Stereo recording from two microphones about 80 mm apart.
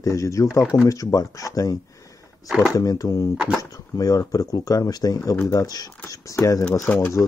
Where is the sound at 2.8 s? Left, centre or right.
Left.